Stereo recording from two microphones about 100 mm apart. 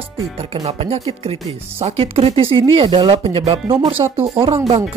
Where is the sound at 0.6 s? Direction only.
90° right.